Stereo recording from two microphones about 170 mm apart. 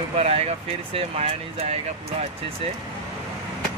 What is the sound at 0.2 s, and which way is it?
Speech, 40° right (ahead or behind).